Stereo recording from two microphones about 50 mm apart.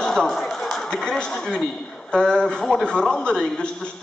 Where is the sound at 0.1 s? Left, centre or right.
Centre.